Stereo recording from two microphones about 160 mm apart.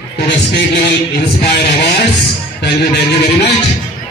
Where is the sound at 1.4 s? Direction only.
90° left.